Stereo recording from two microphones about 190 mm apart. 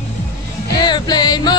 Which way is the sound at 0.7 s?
25° left (ahead or behind).